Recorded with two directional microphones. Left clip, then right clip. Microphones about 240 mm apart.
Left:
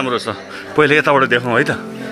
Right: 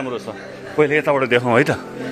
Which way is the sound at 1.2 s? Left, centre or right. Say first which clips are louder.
Left 1 dB; centre.